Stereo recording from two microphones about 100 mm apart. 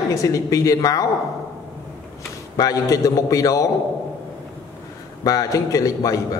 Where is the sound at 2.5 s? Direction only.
35° left (ahead or behind).